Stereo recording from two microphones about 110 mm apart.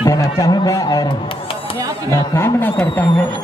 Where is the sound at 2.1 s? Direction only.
20° left (ahead or behind).